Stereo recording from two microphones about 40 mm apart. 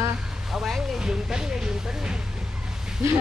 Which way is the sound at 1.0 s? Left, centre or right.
Centre.